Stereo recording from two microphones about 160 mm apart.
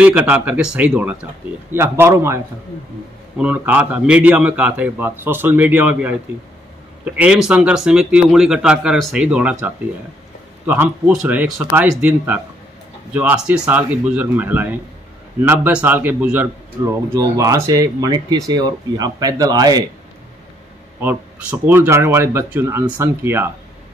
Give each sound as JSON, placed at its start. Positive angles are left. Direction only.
{"t": 0.0, "sound": "a man's voice", "side_deg": -10}
{"t": 7.2, "sound": "speech", "side_deg": -5}
{"t": 11.1, "sound": "a man's voice", "side_deg": -5}
{"t": 21.0, "sound": "a man's voice", "side_deg": -10}